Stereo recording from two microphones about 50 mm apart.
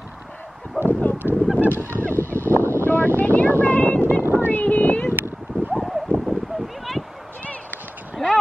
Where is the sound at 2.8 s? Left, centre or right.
Left.